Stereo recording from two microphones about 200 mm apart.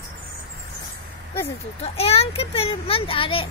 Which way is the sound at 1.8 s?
30° left (ahead or behind).